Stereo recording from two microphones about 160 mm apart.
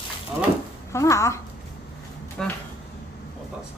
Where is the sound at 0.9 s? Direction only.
20° left (ahead or behind).